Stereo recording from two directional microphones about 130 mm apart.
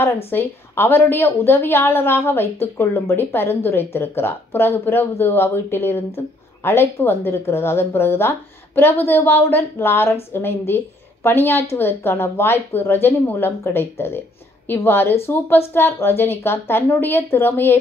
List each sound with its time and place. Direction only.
0.3 s a woman's voice: 15° left (ahead or behind)